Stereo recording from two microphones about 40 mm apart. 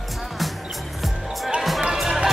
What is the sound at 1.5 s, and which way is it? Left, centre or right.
Music, centre.